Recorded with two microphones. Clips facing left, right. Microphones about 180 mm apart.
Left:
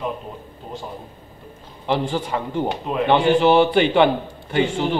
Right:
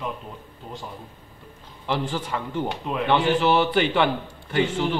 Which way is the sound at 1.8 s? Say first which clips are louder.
Left 5 dB; 20° left (ahead or behind).